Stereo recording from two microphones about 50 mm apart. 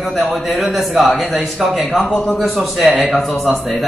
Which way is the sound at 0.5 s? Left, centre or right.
Centre.